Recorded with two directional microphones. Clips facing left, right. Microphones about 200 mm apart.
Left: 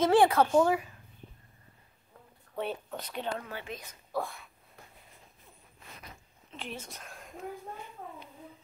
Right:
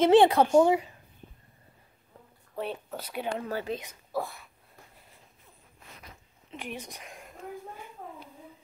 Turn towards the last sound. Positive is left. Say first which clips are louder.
# right 2 dB
turn(degrees=-15)  # may be behind; listen again after turning